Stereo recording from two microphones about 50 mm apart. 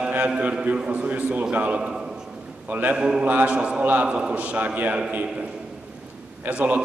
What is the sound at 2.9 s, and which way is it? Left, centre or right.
A man's voice, right.